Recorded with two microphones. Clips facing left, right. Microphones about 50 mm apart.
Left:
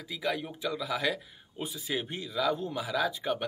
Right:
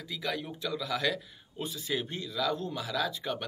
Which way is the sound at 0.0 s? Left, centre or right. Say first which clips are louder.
Left 2 dB; centre.